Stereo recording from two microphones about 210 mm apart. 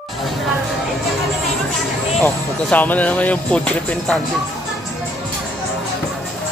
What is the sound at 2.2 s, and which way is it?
Speech, 10° left (ahead or behind).